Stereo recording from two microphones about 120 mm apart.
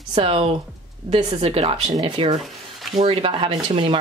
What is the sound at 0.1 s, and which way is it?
Speech, 50° right (ahead or behind).